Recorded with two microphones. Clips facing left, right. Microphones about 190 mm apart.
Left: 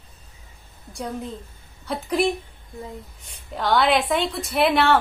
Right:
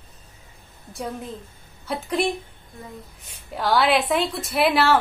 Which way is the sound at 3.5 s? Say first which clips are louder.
Even; 5° right (ahead or behind).